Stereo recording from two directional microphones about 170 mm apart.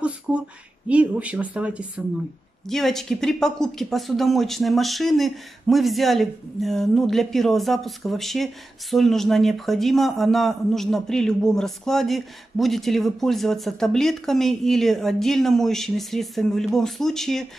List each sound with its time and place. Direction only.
0.3 s speech: 5° right (ahead or behind)